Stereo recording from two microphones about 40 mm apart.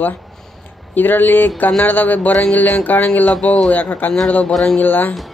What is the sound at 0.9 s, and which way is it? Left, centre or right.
Speech, left.